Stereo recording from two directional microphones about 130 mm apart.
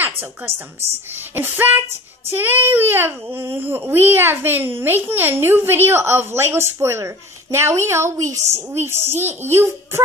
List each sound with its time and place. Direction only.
1.3 s child singing: 15° right (ahead or behind)
7.5 s a woman's voice: 20° right (ahead or behind)